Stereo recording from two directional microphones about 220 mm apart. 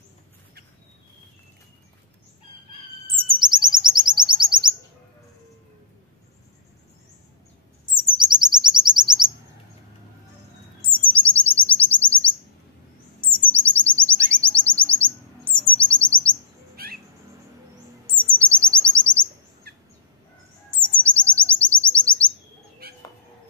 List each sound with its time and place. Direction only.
3.2 s chirp: 20° right (ahead or behind)
7.8 s chirp: 20° right (ahead or behind)
11.1 s chirp: 5° left (ahead or behind)
13.5 s chirp: 5° left (ahead or behind)
16.8 s bird: 45° right (ahead or behind)
18.1 s chirp: 5° left (ahead or behind)
19.7 s fowl: 45° right (ahead or behind)
21.0 s chirp: 5° left (ahead or behind)